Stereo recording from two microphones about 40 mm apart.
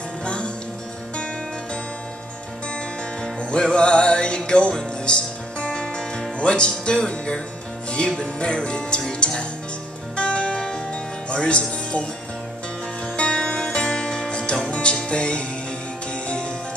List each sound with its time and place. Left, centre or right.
0.2 s music: left
3.2 s music: left
13.0 s music: left